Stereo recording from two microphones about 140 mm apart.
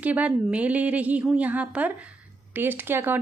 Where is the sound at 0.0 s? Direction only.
10° right (ahead or behind).